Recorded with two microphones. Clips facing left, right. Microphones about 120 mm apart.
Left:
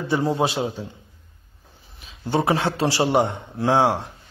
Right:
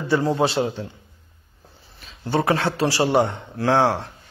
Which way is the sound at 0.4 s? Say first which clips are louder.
Right 2 dB; 10° left (ahead or behind).